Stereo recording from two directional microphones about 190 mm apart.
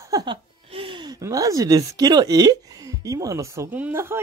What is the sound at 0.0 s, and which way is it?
Speech, 20° right (ahead or behind).